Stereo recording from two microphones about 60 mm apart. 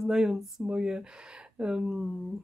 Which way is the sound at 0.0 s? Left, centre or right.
Centre.